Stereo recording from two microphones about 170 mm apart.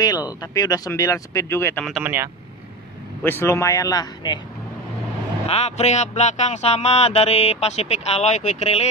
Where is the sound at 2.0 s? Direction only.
10° right (ahead or behind).